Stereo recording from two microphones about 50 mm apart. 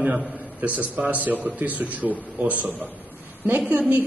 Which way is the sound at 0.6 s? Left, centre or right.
Right.